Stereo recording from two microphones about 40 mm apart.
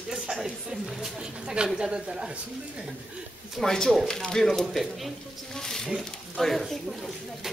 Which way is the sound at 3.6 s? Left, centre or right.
Centre.